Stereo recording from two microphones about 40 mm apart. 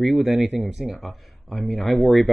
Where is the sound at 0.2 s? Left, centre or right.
Right.